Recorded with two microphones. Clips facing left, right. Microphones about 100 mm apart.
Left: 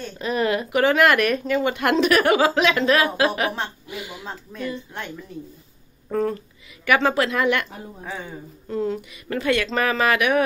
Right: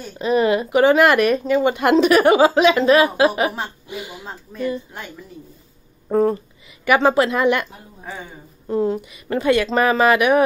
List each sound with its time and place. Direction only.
0.0 s a woman's voice: 15° right (ahead or behind)
6.0 s a sound: 25° right (ahead or behind)
7.3 s speech: 20° right (ahead or behind)
8.0 s speech: centre (ahead or behind)
8.6 s speech: 25° right (ahead or behind)